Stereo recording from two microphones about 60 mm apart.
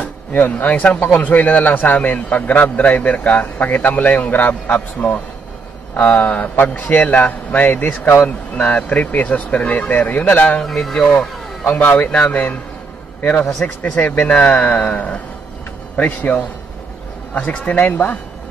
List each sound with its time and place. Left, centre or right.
0.0 s a man's voice: left
10.6 s speech: centre
11.6 s a man's voice: left
13.5 s speech: centre
13.9 s a man's voice: left